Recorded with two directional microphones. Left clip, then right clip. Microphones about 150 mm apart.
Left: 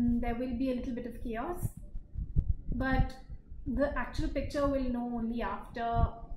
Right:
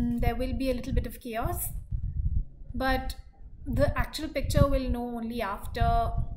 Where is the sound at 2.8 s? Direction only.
15° right (ahead or behind).